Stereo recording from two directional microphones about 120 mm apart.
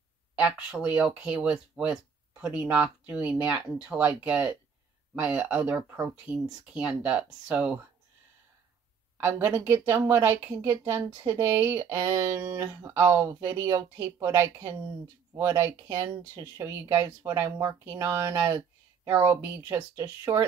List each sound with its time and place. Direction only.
0.4 s speech: 10° right (ahead or behind)
6.3 s speech: 5° right (ahead or behind)
9.2 s speech: 15° right (ahead or behind)